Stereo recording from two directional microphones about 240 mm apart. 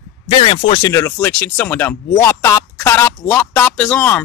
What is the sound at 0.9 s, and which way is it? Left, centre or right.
Speech, centre.